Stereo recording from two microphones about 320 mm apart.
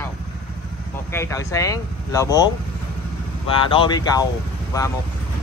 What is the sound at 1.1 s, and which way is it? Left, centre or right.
Speech, centre.